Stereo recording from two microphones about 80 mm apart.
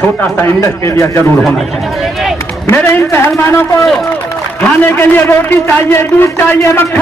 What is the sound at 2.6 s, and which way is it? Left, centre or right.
A man's voice, left.